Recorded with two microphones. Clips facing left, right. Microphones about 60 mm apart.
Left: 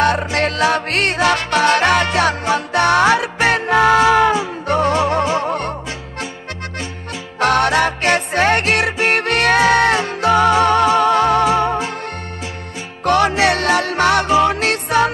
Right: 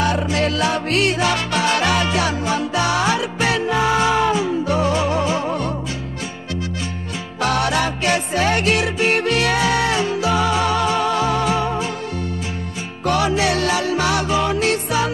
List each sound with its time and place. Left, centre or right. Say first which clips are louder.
0.0 s music: left 3 dB; left
7.3 s music: left 5 dB; left
13.0 s music: left 4 dB; left